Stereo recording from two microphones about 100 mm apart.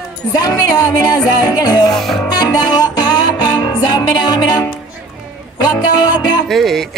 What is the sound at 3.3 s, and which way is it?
Music, 45° left (ahead or behind).